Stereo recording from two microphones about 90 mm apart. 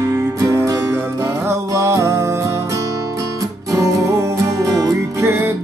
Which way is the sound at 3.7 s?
35° right (ahead or behind).